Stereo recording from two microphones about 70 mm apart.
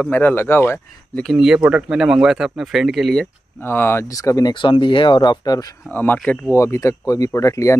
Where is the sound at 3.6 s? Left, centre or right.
Left.